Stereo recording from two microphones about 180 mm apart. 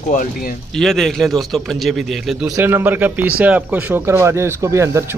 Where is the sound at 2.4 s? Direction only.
15° right (ahead or behind).